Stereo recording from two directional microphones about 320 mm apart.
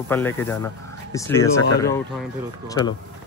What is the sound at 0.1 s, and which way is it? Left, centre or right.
Speech, centre.